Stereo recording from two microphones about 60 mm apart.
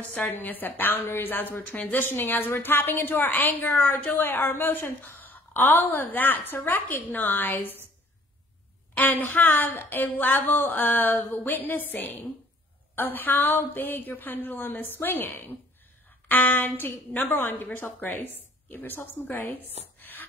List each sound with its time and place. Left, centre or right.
0.1 s a woman's voice: left
8.9 s a woman's voice: left